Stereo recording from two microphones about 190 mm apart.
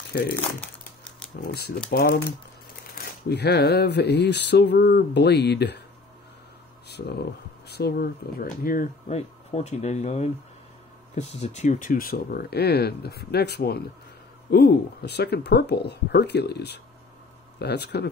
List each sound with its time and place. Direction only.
0.1 s speech: 55° left (ahead or behind)
1.5 s speech: 55° left (ahead or behind)
6.9 s speech: 60° left (ahead or behind)
9.5 s speech: 35° left (ahead or behind); by 18.0 s 60° left (ahead or behind)